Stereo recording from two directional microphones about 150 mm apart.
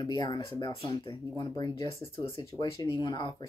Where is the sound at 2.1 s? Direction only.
35° left (ahead or behind).